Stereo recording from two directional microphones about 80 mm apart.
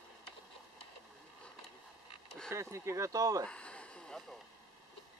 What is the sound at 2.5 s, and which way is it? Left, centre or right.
Speech, right.